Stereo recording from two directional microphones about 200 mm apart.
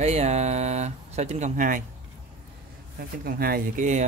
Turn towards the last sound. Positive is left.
turn(degrees=-35)  # may be behind; listen again after turning